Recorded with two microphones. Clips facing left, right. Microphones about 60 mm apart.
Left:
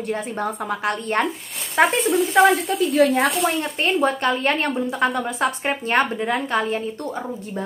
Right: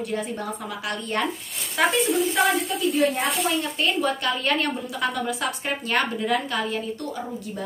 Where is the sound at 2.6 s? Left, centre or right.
Left.